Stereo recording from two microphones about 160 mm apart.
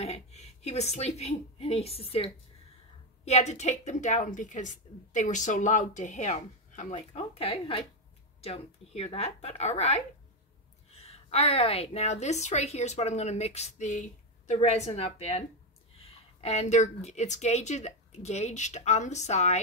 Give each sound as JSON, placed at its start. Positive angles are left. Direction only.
{"t": 0.0, "sound": "a woman's voice", "side_deg": 45}